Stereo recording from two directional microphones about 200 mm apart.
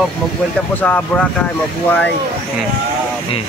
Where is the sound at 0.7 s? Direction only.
10° left (ahead or behind).